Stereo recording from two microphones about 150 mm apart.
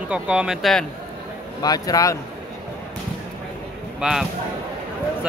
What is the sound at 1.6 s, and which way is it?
Speech, 25° left (ahead or behind).